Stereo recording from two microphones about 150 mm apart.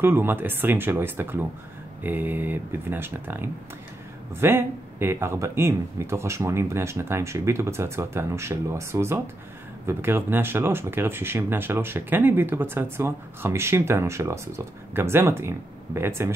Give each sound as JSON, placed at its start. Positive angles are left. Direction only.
{"t": 0.0, "sound": "speech", "side_deg": -15}